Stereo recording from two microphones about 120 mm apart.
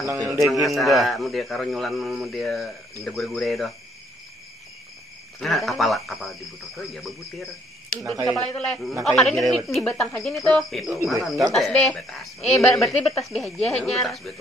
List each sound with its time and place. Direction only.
0.0 s a man's voice: 30° right (ahead or behind)
0.5 s speech: centre (ahead or behind)
5.4 s speech: centre (ahead or behind)